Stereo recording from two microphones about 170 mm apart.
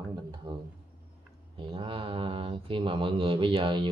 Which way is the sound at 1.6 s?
30° right (ahead or behind).